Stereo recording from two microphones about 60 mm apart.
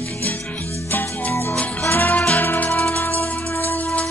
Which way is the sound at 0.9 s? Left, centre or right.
Left.